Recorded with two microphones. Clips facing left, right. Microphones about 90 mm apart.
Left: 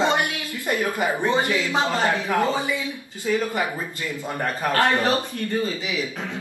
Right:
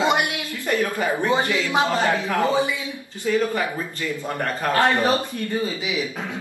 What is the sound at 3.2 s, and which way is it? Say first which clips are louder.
A man's voice: right 2 dB; 15° left (ahead or behind).